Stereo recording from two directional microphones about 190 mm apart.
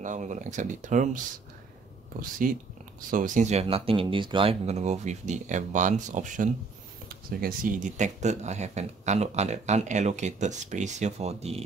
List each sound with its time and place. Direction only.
0.0 s speech: 40° right (ahead or behind)
2.4 s speech: 45° right (ahead or behind)